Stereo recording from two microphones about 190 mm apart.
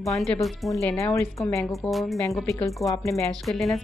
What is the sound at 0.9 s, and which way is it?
Speech, 15° left (ahead or behind).